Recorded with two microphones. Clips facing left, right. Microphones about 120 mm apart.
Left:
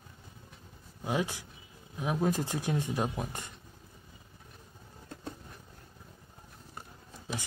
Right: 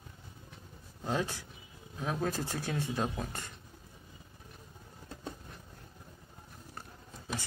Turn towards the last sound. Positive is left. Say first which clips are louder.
# left 1 dB
turn(degrees=15)  # may be behind; listen again after turning